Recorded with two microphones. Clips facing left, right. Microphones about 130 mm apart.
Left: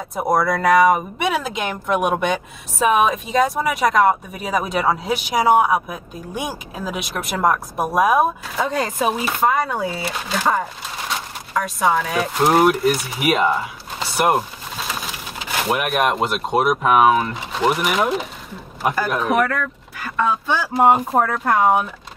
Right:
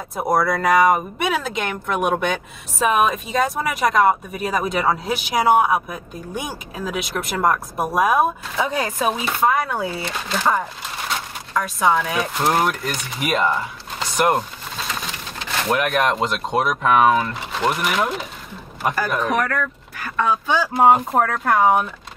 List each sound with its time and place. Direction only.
0.1 s speech: centre (ahead or behind)
21.2 s speech: 10° left (ahead or behind)